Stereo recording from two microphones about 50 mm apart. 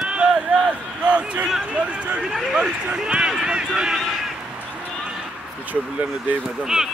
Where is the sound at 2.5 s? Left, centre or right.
Right.